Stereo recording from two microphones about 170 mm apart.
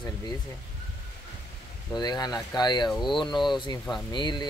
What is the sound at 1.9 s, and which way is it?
Speech, 25° left (ahead or behind).